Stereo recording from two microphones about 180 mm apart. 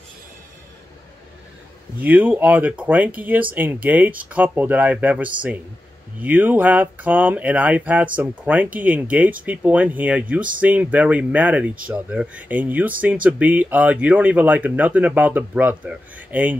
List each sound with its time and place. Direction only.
2.0 s speech: 10° right (ahead or behind)